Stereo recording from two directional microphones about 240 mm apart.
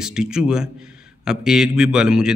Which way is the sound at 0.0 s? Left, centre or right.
Centre.